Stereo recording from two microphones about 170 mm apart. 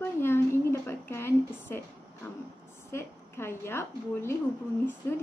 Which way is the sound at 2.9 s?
15° left (ahead or behind).